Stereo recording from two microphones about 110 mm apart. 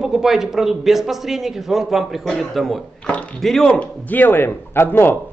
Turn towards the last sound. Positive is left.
turn(degrees=20)  # may be behind; listen again after turning